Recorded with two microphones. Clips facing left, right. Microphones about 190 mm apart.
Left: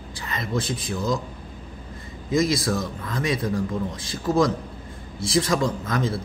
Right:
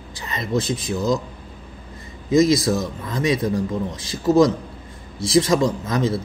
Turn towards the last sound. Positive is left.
turn(degrees=-20)  # may be behind; listen again after turning